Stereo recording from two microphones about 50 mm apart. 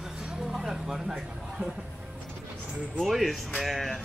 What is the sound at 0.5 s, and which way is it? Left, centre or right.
Vehicle, centre.